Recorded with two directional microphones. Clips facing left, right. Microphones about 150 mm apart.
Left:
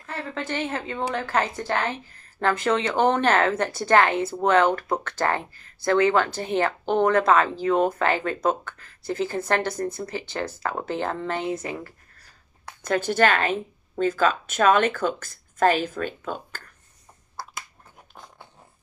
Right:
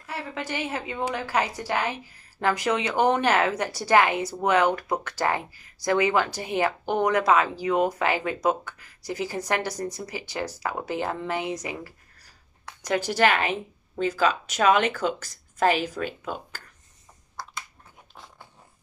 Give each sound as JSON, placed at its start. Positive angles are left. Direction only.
{"t": 0.0, "sound": "a woman's voice", "side_deg": -10}